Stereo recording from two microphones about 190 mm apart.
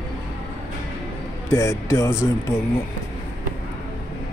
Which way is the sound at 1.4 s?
15° left (ahead or behind).